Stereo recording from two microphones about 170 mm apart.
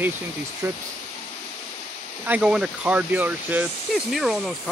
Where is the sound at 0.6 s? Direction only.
15° right (ahead or behind).